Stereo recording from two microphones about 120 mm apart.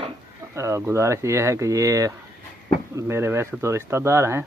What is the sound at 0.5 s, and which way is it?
Speech, 25° right (ahead or behind).